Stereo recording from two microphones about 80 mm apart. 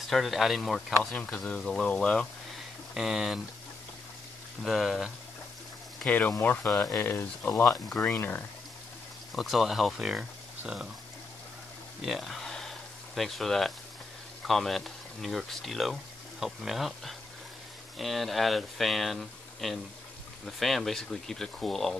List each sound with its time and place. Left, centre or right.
0.1 s speech: centre
1.1 s speech: centre
1.4 s speech: centre
2.9 s speech: centre
4.6 s speech: centre
6.0 s speech: left
9.3 s speech: centre
12.0 s a sound: centre
14.4 s speech: centre